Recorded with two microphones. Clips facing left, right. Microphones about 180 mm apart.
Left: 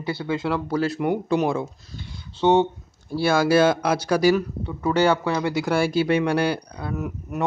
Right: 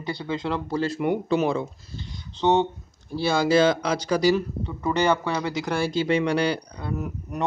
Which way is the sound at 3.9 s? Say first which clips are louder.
Left 2 dB; 10° left (ahead or behind).